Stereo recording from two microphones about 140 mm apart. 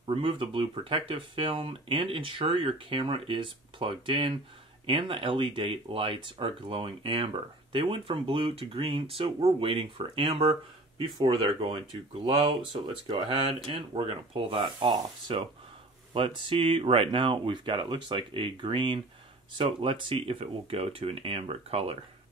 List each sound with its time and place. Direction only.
0.0 s speech: 40° right (ahead or behind)